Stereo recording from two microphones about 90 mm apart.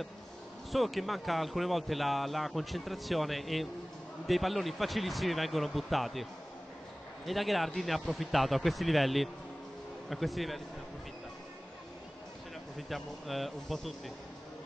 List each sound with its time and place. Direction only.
0.7 s a man's voice: centre (ahead or behind)
7.2 s a man's voice: centre (ahead or behind)
12.7 s a man's voice: centre (ahead or behind)